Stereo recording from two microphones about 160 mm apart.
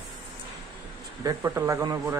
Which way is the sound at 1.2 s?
20° right (ahead or behind).